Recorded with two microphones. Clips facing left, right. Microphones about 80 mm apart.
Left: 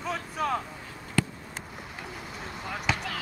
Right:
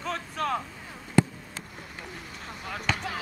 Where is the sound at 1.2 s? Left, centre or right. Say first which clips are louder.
Right 5 dB; right.